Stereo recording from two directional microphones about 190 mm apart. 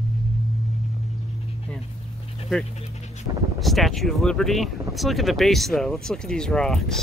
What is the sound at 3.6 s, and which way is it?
Speech, centre (ahead or behind).